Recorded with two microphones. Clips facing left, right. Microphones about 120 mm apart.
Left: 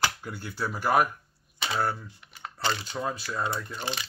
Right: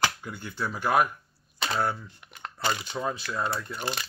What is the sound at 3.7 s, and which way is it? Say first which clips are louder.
Speech: right 1 dB; centre (ahead or behind).